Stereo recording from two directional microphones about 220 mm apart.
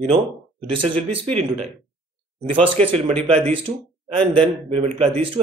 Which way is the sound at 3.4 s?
25° right (ahead or behind).